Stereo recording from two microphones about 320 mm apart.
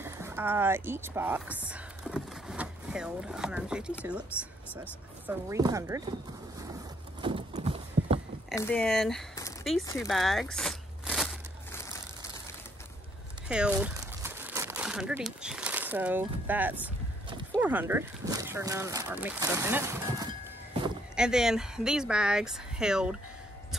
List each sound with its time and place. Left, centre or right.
0.0 s speech: centre
6.6 s horse: centre
8.5 s speech: centre
9.9 s a sound: centre
13.5 s crumpling: centre
17.6 s speech: centre
21.2 s speech: centre